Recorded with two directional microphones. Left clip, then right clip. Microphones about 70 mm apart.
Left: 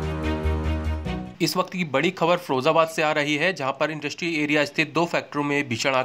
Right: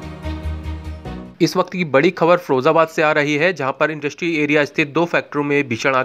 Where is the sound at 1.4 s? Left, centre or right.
Right.